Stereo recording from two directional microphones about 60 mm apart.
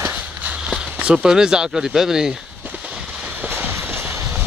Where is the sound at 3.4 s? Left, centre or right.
Right.